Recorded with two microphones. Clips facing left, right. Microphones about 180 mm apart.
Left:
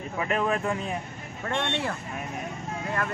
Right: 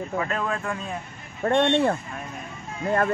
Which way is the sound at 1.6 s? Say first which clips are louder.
Right 10 dB; 50° right (ahead or behind).